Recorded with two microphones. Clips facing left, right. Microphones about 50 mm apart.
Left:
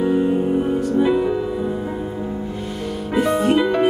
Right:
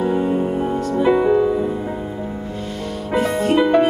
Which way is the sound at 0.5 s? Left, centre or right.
Centre.